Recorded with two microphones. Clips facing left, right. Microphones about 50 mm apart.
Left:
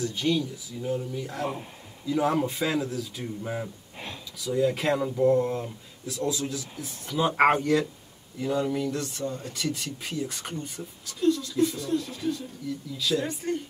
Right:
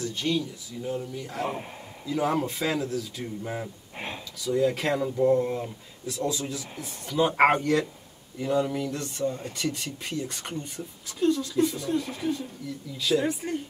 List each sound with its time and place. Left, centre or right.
0.0 s speech: centre
11.1 s speech: centre
12.0 s speech: right